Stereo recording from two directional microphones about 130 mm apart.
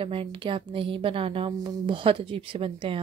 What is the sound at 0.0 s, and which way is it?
Speech, 45° right (ahead or behind).